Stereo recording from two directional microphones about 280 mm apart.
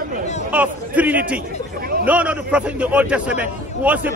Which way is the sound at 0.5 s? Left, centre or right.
Centre.